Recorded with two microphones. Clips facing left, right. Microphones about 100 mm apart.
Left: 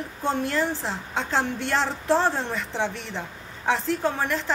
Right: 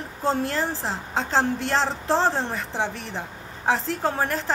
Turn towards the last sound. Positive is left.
turn(degrees=-35)  # may be behind; listen again after turning